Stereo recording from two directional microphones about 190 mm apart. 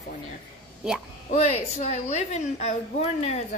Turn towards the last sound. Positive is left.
turn(degrees=35)  # may be behind; listen again after turning